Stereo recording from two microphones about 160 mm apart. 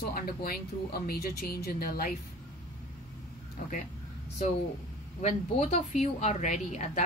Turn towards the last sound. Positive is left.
turn(degrees=45)  # may be behind; listen again after turning